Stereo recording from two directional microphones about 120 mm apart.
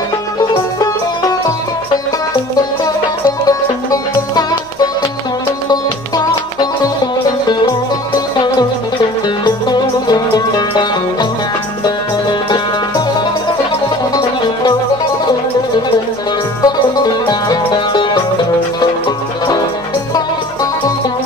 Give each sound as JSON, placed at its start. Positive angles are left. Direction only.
{"t": 0.4, "sound": "music", "side_deg": 35}
{"t": 2.8, "sound": "music", "side_deg": 30}
{"t": 5.7, "sound": "music", "side_deg": 35}
{"t": 9.4, "sound": "music", "side_deg": 35}
{"t": 14.1, "sound": "music", "side_deg": 40}
{"t": 16.6, "sound": "music", "side_deg": 35}